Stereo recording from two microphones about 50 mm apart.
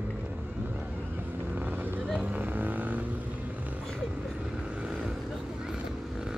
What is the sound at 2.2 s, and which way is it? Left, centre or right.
Vehicle, right.